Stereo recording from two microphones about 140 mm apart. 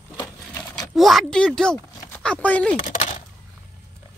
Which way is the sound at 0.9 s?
Centre (ahead or behind).